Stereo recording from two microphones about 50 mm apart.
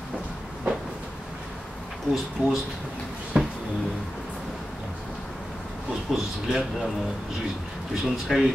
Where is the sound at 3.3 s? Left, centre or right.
Centre.